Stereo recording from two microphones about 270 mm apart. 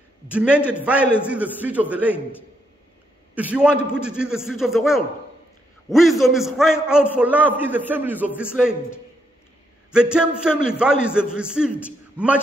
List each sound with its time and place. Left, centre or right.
0.3 s a man's voice: centre
0.6 s a man's voice: centre
1.2 s a man's voice: centre
3.3 s a man's voice: centre
9.9 s a man's voice: centre